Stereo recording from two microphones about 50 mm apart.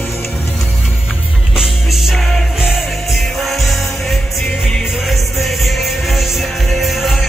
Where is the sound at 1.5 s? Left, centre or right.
Centre.